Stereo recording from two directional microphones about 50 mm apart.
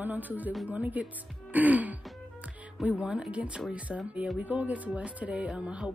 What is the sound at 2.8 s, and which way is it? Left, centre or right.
Speech, right.